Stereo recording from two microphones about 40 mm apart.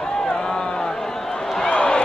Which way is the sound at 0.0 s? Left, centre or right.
Centre.